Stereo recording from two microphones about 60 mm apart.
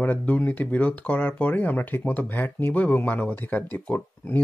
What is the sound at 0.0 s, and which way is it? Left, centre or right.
Speech, left.